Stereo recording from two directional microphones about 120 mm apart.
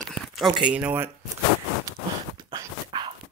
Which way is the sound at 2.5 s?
40° right (ahead or behind).